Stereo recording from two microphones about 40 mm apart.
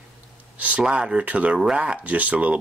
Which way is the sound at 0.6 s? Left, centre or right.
Right.